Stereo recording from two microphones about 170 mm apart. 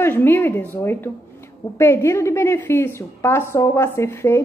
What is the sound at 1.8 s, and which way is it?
A woman's voice, 15° left (ahead or behind).